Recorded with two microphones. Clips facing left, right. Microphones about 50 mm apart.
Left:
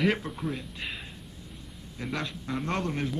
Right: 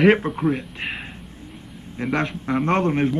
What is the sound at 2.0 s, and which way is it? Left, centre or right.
A man's voice, right.